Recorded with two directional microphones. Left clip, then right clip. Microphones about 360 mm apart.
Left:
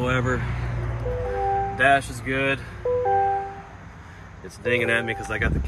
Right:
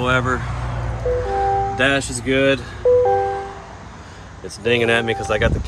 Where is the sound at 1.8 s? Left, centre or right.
Centre.